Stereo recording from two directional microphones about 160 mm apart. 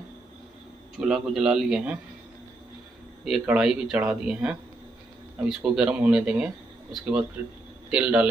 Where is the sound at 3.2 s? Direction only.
5° right (ahead or behind).